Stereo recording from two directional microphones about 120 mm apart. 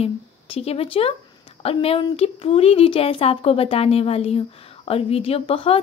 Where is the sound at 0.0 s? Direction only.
55° left (ahead or behind).